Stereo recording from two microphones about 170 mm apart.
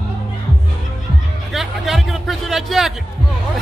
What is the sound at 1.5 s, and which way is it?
A man's voice, centre (ahead or behind).